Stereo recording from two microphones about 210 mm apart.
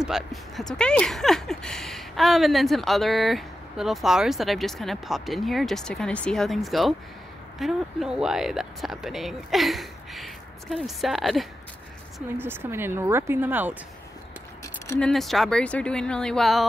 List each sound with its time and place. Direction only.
0.0 s speech: centre (ahead or behind)
12.4 s speech: 10° right (ahead or behind)
14.9 s speech: 5° left (ahead or behind)